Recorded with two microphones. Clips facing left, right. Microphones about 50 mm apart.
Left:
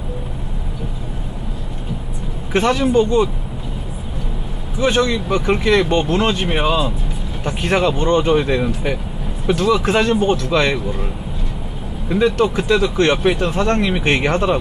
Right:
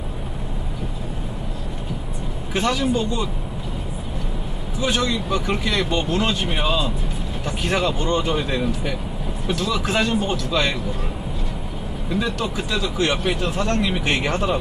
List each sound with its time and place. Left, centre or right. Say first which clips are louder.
2.5 s speech: left 6 dB; left
4.7 s speech: left 6 dB; left
12.1 s speech: left 9 dB; left